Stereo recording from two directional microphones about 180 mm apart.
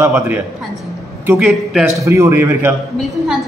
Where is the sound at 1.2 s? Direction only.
10° right (ahead or behind).